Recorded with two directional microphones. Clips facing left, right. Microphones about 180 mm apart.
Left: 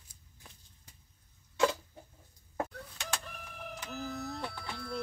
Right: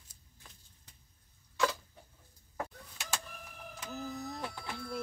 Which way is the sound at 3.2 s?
70° left (ahead or behind).